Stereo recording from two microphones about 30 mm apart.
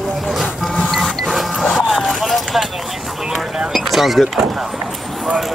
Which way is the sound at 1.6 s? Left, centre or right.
Centre.